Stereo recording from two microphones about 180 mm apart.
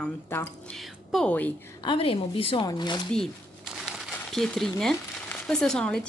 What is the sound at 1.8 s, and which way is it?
Speech, 30° left (ahead or behind).